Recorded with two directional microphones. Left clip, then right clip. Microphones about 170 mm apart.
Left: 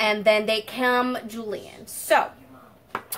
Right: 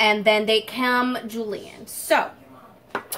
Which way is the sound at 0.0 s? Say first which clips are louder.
Right 2 dB; 5° left (ahead or behind).